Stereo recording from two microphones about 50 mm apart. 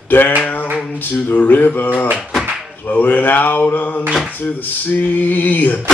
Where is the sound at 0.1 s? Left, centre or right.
Left.